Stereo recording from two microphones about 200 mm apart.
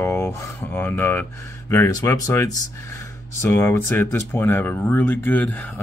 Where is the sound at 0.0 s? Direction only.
15° left (ahead or behind).